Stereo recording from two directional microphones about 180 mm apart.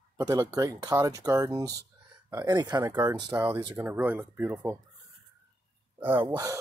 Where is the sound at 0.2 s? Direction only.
20° right (ahead or behind).